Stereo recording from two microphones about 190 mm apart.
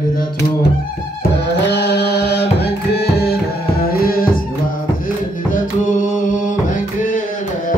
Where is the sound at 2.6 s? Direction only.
60° left (ahead or behind); by 6.5 s 40° left (ahead or behind).